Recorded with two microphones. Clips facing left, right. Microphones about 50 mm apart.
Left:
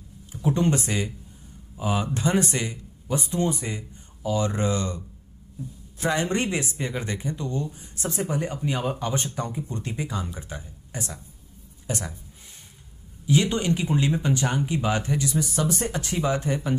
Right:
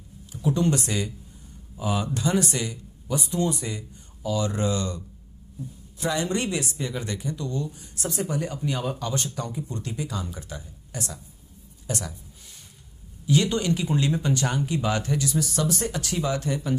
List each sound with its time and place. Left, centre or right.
0.3 s speech: left
11.9 s a sound: left
13.3 s speech: left